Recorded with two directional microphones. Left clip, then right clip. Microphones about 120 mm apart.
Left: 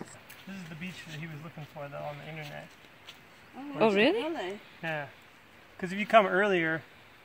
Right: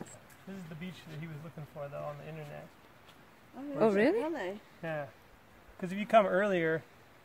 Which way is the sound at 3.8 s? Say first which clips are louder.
Left 3 dB; 5° right (ahead or behind).